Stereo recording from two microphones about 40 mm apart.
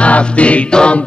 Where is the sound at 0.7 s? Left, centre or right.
Left.